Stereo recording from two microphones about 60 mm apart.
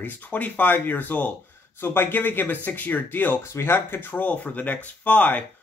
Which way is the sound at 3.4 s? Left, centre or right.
Left.